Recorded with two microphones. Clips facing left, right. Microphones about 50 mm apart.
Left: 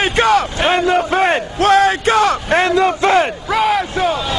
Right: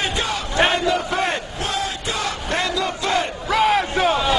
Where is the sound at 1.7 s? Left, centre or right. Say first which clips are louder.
Left 14 dB; left.